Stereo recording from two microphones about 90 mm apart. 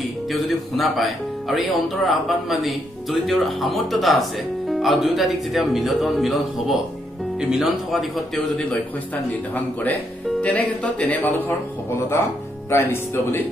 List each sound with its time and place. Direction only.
0.3 s speech: centre (ahead or behind)
8.5 s a man's voice: 15° left (ahead or behind)
10.4 s speech: 15° left (ahead or behind)